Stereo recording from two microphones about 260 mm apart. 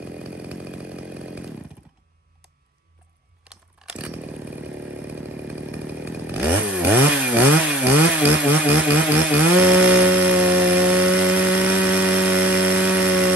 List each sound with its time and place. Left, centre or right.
0.2 s chainsaw: centre
3.4 s chainsaw: centre